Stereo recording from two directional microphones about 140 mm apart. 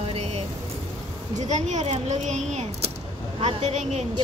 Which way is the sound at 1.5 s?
55° right (ahead or behind).